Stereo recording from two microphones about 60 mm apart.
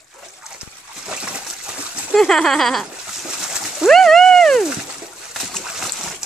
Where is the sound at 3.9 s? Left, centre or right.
Centre.